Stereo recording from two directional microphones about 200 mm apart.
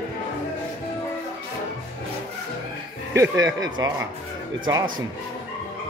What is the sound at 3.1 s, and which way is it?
Speech, 15° right (ahead or behind).